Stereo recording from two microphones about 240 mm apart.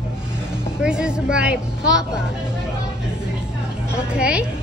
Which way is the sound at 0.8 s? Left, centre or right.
Centre.